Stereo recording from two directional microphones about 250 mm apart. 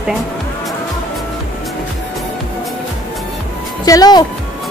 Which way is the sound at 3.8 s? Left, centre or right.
Centre.